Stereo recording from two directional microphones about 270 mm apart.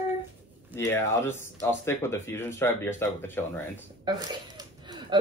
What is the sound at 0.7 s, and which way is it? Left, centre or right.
Speech, centre.